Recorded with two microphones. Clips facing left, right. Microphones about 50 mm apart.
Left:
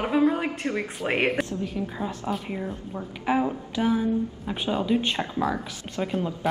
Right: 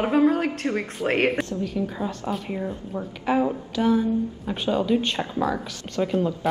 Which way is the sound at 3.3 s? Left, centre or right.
Centre.